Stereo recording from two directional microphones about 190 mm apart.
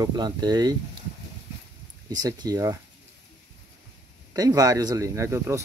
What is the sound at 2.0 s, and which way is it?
Speech, 20° right (ahead or behind).